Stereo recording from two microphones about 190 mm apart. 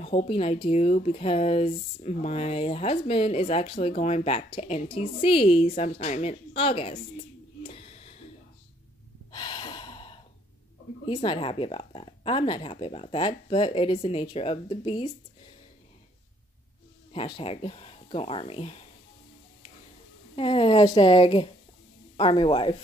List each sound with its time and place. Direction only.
0.0 s speech: 30° left (ahead or behind)
7.6 s a sound: 30° left (ahead or behind)
9.3 s gasp: 25° left (ahead or behind)
11.1 s speech: 25° left (ahead or behind)
17.1 s speech: 30° left (ahead or behind)
20.3 s speech: 30° left (ahead or behind)